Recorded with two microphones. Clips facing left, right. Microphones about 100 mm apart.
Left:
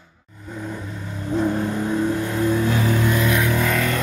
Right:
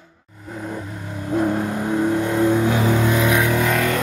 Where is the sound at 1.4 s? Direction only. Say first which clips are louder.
Even; 15° right (ahead or behind).